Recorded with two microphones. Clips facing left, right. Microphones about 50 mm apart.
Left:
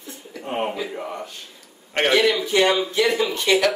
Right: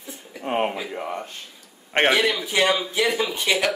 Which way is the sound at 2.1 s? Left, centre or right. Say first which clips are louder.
Left 3 dB; centre.